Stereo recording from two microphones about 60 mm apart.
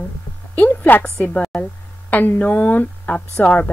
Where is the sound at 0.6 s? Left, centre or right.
Left.